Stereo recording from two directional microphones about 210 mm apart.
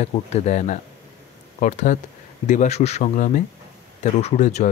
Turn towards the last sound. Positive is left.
turn(degrees=35)  # may be behind; listen again after turning